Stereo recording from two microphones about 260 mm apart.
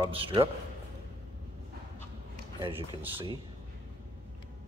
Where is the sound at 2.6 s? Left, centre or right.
Centre.